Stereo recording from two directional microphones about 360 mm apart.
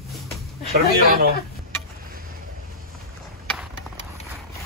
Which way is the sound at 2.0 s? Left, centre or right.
Right.